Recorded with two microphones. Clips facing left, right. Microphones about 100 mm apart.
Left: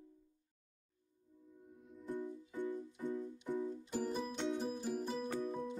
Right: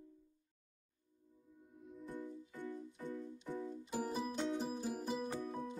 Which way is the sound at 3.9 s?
5° right (ahead or behind).